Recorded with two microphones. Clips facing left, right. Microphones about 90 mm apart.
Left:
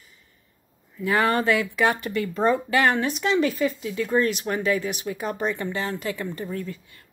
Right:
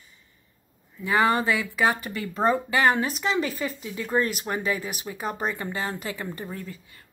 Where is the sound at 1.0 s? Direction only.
Centre (ahead or behind).